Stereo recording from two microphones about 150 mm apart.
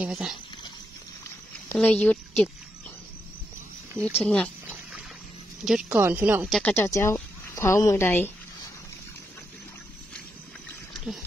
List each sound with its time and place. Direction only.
0.0 s speech: 5° right (ahead or behind)
1.7 s speech: 10° left (ahead or behind)
4.0 s speech: 5° left (ahead or behind)
5.7 s speech: 5° right (ahead or behind)
6.6 s a woman's voice: 15° left (ahead or behind)